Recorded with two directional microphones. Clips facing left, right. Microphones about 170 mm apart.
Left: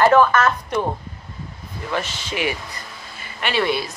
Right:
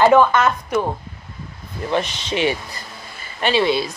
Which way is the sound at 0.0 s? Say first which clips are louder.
Right 1 dB; 15° right (ahead or behind).